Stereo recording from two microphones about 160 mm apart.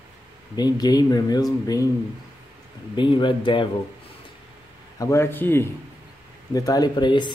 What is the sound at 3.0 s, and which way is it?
Speech, 30° left (ahead or behind).